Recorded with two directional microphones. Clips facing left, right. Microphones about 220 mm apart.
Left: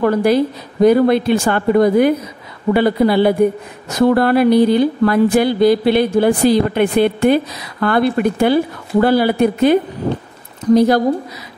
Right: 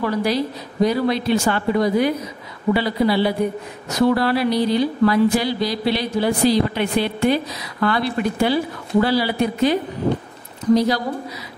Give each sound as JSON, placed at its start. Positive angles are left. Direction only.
{"t": 0.0, "sound": "speech", "side_deg": 50}